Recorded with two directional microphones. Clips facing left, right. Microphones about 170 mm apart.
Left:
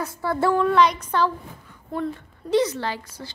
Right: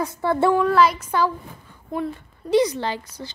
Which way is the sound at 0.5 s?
5° right (ahead or behind).